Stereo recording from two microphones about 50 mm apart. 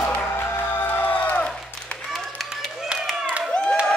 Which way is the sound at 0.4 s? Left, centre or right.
Left.